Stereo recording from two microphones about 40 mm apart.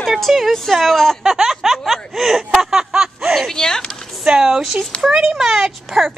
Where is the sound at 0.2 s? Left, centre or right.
Centre.